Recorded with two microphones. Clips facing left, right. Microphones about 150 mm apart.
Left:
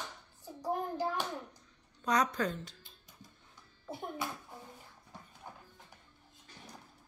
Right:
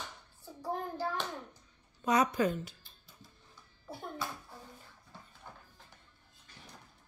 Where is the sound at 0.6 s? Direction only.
15° left (ahead or behind).